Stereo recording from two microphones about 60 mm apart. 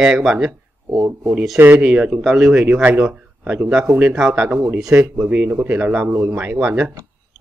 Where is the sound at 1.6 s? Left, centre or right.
Right.